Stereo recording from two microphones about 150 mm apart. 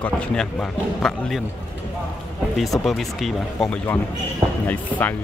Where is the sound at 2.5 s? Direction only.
Centre (ahead or behind).